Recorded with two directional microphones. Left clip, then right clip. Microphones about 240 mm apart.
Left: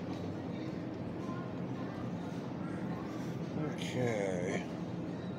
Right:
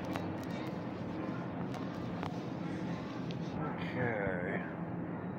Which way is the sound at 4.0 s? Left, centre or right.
Left.